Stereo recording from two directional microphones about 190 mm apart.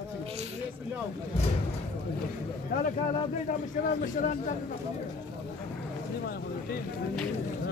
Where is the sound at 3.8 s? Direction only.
40° left (ahead or behind).